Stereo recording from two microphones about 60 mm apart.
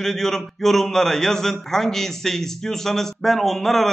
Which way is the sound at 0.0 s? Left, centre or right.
Centre.